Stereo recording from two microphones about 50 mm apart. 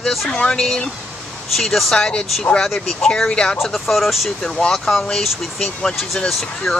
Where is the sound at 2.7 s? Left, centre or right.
Centre.